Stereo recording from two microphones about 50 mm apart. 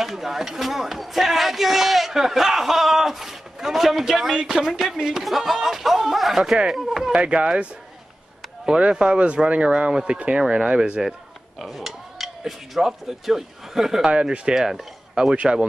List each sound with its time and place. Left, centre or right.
0.0 s speech: centre
7.2 s speech: right
8.6 s speech: centre
10.4 s speech: centre
11.6 s speech: centre
14.1 s speech: centre
15.3 s speech: right